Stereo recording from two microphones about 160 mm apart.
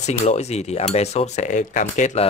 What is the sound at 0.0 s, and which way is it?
Speech, 45° left (ahead or behind).